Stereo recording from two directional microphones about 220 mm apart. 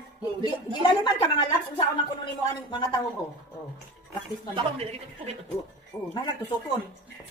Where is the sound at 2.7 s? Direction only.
20° left (ahead or behind).